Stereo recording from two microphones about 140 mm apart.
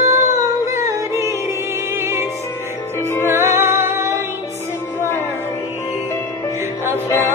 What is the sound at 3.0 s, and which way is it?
Music, 20° left (ahead or behind).